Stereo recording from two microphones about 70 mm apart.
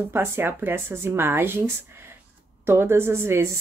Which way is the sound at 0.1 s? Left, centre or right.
Right.